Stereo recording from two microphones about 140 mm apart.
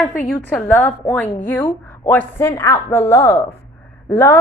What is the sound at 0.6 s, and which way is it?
A woman's voice, 10° left (ahead or behind).